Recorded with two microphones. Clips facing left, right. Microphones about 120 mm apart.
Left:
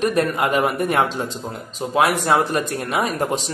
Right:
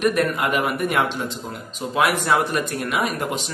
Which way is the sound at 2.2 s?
30° left (ahead or behind).